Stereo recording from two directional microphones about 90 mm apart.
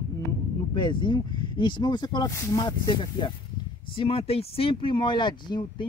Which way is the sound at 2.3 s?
30° left (ahead or behind).